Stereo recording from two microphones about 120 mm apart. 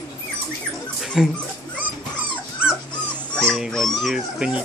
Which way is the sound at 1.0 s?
5° right (ahead or behind).